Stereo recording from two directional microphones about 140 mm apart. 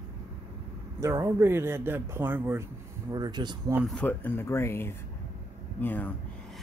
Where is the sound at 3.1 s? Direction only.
30° right (ahead or behind).